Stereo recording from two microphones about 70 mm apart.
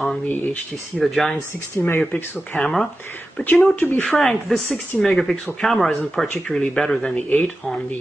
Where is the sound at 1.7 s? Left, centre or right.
Left.